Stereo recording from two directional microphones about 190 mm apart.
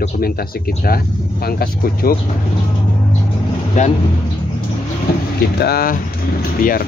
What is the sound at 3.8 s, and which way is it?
Speech, 40° left (ahead or behind).